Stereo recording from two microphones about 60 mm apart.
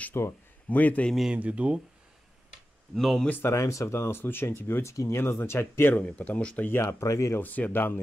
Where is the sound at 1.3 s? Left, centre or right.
Right.